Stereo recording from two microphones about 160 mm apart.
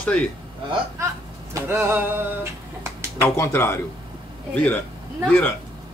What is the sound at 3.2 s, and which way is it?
A man's voice, 15° left (ahead or behind).